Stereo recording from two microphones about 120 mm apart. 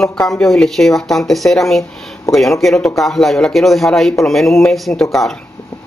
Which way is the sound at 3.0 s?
Centre (ahead or behind).